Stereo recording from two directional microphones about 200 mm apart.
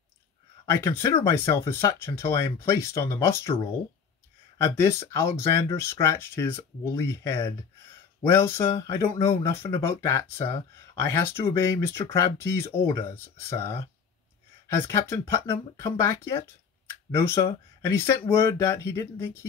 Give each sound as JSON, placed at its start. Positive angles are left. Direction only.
{"t": 0.8, "sound": "speech", "side_deg": 15}
{"t": 4.6, "sound": "speech", "side_deg": 15}